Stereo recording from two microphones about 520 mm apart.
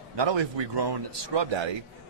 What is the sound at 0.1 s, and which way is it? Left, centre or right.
A man's voice, right.